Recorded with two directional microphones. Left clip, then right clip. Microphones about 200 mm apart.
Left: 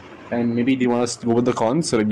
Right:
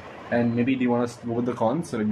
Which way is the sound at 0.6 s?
35° left (ahead or behind).